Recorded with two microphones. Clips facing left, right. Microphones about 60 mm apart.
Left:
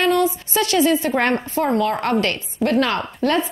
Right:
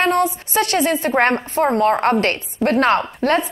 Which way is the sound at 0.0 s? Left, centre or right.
Right.